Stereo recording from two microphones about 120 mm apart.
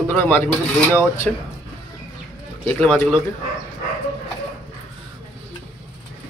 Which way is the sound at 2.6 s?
10° left (ahead or behind).